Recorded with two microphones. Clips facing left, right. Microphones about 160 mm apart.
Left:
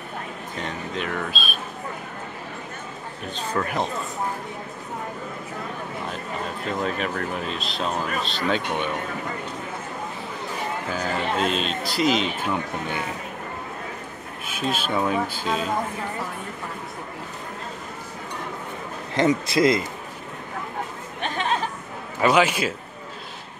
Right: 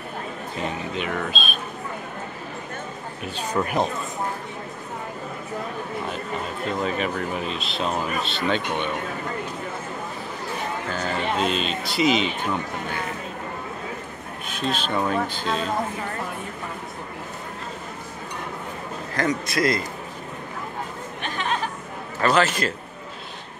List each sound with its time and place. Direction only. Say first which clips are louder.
0.6 s speech: right 2 dB; 5° right (ahead or behind)
3.3 s speech: right 2 dB; 15° right (ahead or behind)
6.0 s speech: right 1 dB; centre (ahead or behind)
10.9 s speech: even; 5° left (ahead or behind)
14.5 s speech: even; 5° left (ahead or behind)
19.1 s a man's voice: left 4 dB; 25° left (ahead or behind)
22.2 s a man's voice: left 1 dB; 10° left (ahead or behind)